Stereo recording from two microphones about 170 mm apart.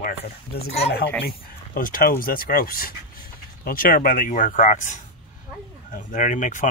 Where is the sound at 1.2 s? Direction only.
60° left (ahead or behind).